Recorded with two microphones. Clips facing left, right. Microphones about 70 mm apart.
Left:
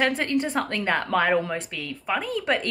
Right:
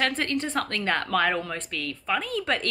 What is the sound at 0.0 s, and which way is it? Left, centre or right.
A woman's voice, centre.